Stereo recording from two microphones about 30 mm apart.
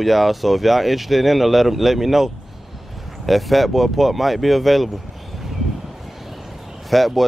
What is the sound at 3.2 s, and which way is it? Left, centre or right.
Speech, centre.